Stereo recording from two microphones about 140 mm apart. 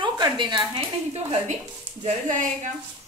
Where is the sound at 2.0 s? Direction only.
65° right (ahead or behind).